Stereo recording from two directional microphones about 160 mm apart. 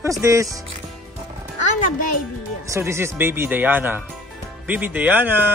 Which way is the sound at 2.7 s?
15° right (ahead or behind).